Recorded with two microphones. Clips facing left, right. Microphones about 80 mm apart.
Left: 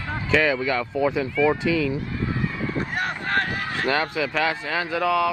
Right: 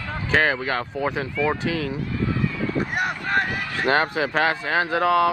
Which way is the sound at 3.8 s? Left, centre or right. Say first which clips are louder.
Right 3 dB; right.